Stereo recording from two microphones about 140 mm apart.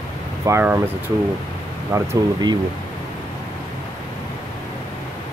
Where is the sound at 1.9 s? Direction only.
25° right (ahead or behind).